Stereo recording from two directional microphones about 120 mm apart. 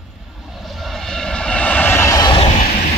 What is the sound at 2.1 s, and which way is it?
Neigh, 40° left (ahead or behind).